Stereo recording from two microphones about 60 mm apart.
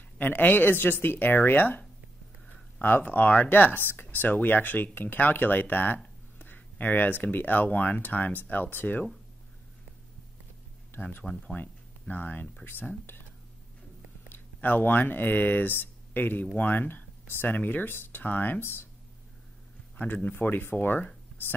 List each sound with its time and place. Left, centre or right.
0.2 s speech: left
10.9 s speech: left
14.3 s speech: left
20.0 s speech: left